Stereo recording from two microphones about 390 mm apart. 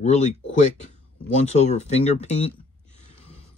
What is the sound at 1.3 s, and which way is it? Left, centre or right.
Speech, centre.